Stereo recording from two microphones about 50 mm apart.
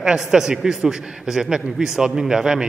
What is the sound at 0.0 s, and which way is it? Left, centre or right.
A man's voice, centre.